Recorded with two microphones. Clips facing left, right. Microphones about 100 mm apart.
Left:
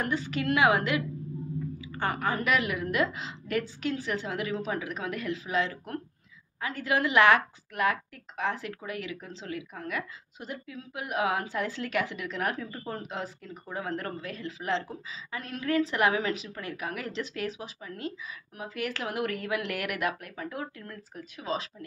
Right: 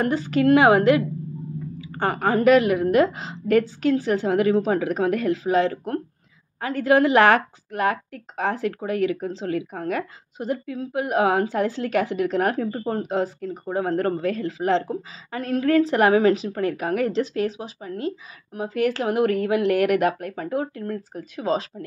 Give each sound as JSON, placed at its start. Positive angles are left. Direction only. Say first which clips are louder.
{"t": 0.0, "sound": "a woman's voice", "louder": "right 10 dB", "side_deg": -40}